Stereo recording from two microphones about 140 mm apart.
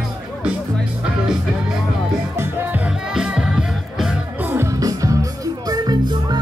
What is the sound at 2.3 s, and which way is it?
Music, 15° right (ahead or behind).